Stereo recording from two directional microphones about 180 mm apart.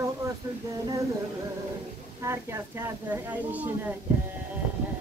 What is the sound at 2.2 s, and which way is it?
A woman's voice, 15° right (ahead or behind).